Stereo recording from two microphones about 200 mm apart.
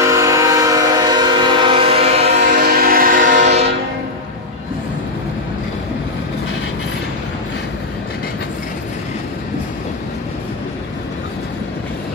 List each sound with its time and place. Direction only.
0.0 s train: 15° right (ahead or behind); by 2.2 s 30° right (ahead or behind)
2.5 s train: 45° right (ahead or behind)
3.3 s train: 60° right (ahead or behind)